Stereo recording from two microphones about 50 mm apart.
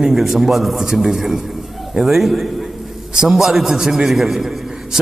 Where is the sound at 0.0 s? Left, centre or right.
Centre.